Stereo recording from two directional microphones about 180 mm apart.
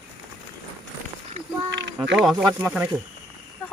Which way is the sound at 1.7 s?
80° right.